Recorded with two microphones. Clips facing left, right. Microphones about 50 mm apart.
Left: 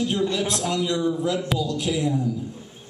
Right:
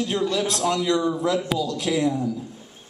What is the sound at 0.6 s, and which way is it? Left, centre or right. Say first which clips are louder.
Speech: right 3 dB; right.